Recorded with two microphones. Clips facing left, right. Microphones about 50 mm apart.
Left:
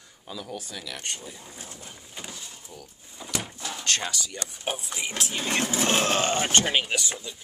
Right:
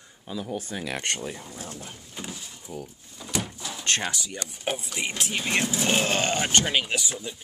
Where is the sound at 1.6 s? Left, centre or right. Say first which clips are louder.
Right 4 dB; right.